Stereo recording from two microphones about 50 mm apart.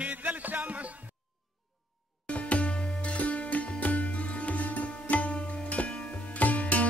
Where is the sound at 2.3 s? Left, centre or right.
Left.